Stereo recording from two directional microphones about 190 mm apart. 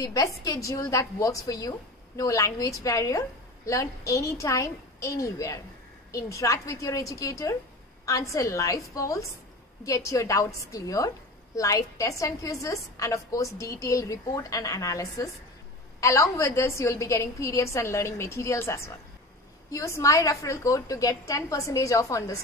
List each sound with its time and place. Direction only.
0.0 s a woman's voice: 20° left (ahead or behind)